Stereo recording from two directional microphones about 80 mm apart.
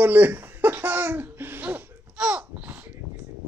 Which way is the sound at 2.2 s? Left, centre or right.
Centre.